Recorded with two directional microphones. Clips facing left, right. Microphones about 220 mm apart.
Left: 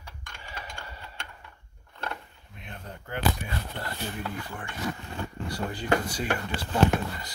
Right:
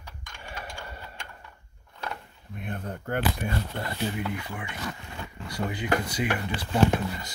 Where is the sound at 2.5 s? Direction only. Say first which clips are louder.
Right 8 dB; 50° right (ahead or behind).